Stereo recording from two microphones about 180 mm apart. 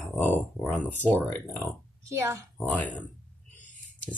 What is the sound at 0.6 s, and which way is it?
Speech, 5° left (ahead or behind).